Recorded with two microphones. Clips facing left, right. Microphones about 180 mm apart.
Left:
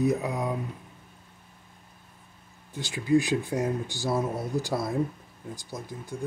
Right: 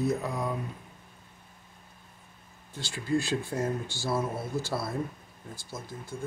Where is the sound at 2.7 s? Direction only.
15° left (ahead or behind).